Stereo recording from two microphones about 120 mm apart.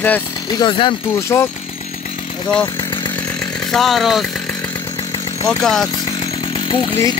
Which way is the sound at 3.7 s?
Centre (ahead or behind).